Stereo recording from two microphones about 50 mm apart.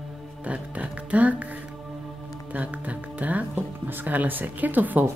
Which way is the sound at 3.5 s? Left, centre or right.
Right.